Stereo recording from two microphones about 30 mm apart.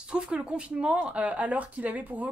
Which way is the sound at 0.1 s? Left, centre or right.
Right.